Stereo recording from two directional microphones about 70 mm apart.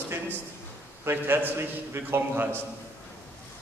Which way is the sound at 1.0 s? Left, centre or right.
Right.